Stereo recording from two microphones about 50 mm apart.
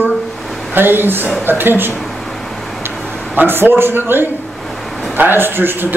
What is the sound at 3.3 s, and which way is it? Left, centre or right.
Speech, right.